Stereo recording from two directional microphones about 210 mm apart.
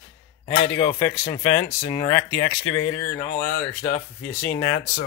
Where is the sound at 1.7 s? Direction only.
20° left (ahead or behind).